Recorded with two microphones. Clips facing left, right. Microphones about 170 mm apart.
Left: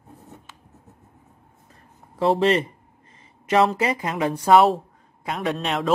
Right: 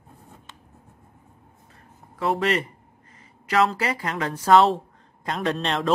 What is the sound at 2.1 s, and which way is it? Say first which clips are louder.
Speech: left 4 dB; 25° left (ahead or behind).